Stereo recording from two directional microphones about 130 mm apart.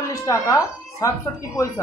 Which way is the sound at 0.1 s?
25° left (ahead or behind).